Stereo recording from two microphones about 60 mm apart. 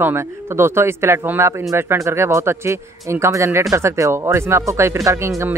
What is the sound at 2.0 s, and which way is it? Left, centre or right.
Speech, right.